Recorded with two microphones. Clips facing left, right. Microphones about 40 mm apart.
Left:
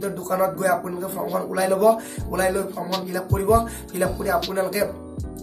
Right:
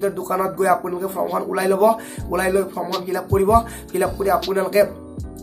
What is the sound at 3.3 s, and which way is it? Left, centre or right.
Speech, right.